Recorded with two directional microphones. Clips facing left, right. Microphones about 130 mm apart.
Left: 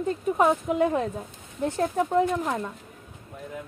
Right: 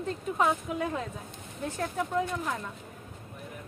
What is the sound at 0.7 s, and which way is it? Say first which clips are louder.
Speech: left 8 dB; 50° left (ahead or behind).